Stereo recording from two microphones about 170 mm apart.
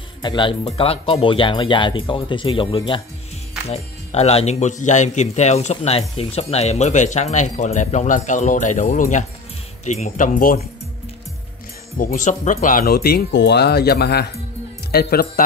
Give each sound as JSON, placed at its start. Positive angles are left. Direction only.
{"t": 0.2, "sound": "speech", "side_deg": 30}
{"t": 12.0, "sound": "speech", "side_deg": 50}